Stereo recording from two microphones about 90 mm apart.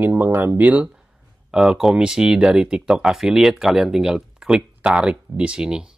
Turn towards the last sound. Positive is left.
turn(degrees=-10)  # may be behind; listen again after turning